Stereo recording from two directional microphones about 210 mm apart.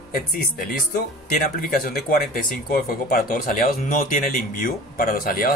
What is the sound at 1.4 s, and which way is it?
Speech, 40° left (ahead or behind).